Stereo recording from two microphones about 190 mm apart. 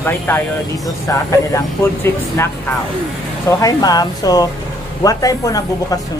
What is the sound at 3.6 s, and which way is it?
Speech, 20° left (ahead or behind).